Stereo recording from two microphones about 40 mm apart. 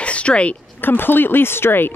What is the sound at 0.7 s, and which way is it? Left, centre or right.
Speech, left.